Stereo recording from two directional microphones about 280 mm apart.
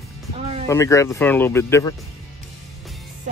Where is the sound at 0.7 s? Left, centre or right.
Centre.